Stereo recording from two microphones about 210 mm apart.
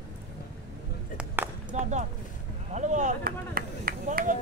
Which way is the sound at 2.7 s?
35° right (ahead or behind).